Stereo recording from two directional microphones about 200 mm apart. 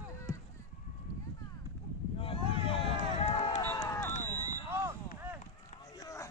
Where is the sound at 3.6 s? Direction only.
20° left (ahead or behind).